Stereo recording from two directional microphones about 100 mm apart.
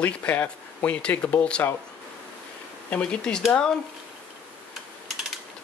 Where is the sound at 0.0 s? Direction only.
15° left (ahead or behind).